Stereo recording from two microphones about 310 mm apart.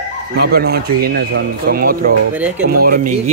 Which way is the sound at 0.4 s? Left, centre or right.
Right.